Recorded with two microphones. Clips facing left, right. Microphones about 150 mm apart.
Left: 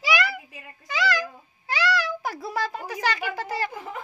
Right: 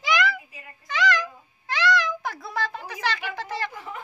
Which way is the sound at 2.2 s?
10° left (ahead or behind).